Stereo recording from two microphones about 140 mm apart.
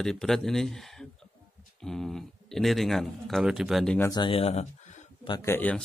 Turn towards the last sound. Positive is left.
turn(degrees=15)  # may be behind; listen again after turning